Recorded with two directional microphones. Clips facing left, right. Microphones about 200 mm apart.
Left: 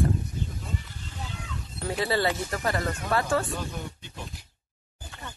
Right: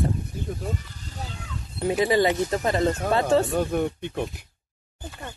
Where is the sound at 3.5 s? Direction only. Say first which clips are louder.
Right 11 dB; 55° right (ahead or behind).